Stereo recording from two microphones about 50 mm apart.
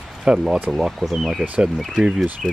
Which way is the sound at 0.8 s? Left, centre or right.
Centre.